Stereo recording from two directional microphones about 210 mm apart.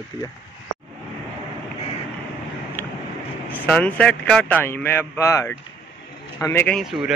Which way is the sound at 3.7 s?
5° left (ahead or behind).